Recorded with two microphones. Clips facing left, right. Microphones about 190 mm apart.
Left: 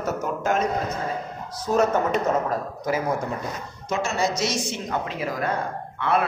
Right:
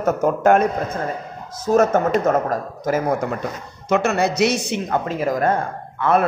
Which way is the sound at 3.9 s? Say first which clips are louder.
Right 6 dB; 60° right (ahead or behind).